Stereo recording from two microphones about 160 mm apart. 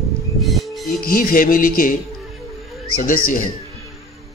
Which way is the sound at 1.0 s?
60° left (ahead or behind).